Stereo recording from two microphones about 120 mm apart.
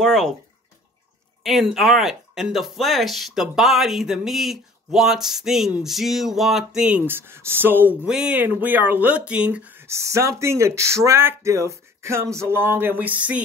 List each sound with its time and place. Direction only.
0.0 s speech: 5° left (ahead or behind)
1.4 s speech: 5° right (ahead or behind)